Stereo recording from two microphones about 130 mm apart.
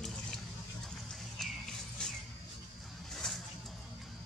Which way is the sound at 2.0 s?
5° left (ahead or behind).